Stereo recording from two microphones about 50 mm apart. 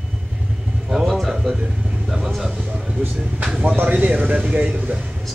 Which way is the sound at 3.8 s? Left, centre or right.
Right.